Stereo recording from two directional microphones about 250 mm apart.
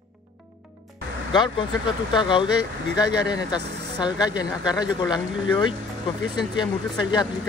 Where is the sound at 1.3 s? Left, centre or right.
Centre.